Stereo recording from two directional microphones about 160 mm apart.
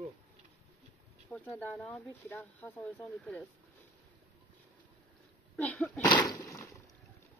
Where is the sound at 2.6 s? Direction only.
10° left (ahead or behind).